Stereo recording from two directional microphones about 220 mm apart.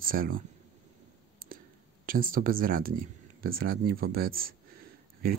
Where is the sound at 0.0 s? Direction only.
40° right (ahead or behind).